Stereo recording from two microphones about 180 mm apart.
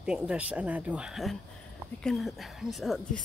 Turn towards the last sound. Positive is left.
turn(degrees=0)  # may be behind; listen again after turning